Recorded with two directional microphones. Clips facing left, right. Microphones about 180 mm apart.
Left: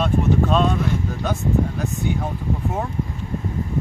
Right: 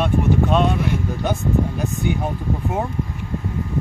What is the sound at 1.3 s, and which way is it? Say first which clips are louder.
Speech: right 1 dB; 20° right (ahead or behind).